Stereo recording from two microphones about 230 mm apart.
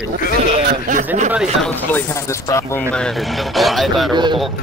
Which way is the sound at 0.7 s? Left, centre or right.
Right.